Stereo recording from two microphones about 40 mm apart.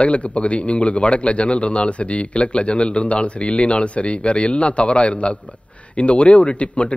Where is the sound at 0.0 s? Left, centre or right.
Left.